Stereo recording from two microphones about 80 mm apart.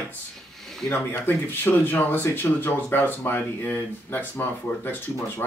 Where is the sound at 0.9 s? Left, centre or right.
Left.